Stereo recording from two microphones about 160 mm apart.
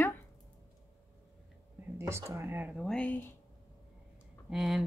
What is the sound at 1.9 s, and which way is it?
Speech, 20° right (ahead or behind).